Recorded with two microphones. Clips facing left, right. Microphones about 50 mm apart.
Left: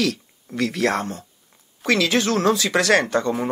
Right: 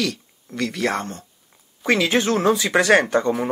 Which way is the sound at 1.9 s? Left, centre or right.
Centre.